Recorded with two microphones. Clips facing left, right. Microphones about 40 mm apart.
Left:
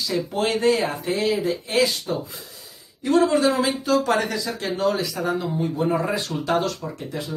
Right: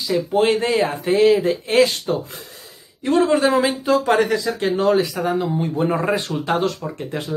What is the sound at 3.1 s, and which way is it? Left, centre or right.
Speech, right.